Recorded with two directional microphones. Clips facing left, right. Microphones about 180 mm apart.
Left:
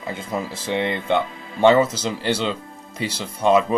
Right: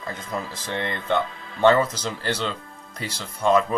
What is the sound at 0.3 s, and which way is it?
Speech, 15° left (ahead or behind).